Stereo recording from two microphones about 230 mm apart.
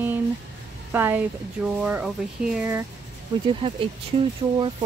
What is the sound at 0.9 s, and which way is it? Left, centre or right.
A woman's voice, centre.